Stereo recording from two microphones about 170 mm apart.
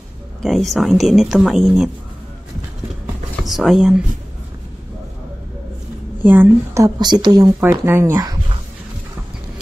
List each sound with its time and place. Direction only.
0.4 s speech: centre (ahead or behind)
3.4 s speech: centre (ahead or behind)
6.2 s a woman's voice: 10° right (ahead or behind)
7.6 s speech: 15° right (ahead or behind)